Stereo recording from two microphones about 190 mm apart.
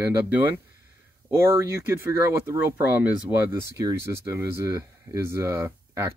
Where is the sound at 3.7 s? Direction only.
15° right (ahead or behind).